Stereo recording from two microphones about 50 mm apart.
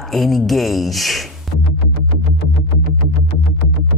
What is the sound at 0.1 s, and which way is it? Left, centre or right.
Speech, centre.